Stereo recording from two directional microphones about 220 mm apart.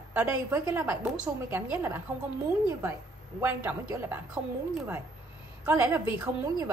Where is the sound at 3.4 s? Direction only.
10° right (ahead or behind).